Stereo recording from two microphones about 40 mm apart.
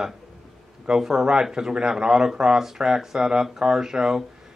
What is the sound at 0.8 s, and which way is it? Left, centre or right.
Speech, centre.